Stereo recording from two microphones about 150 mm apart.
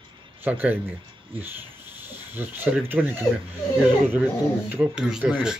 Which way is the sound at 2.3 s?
15° right (ahead or behind).